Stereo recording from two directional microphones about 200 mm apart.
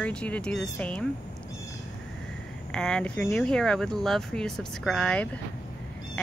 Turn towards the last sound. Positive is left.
turn(degrees=5)  # may be behind; listen again after turning